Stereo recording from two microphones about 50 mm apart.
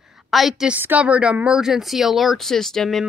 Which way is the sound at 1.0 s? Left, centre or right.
Right.